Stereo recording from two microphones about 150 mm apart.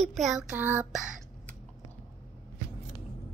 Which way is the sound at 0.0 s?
Centre (ahead or behind).